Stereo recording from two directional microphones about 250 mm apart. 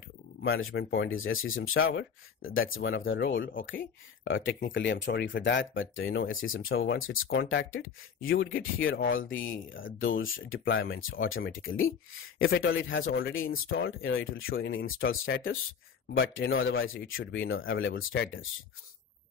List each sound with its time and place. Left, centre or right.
0.4 s speech: left
4.2 s speech: left
9.7 s speech: left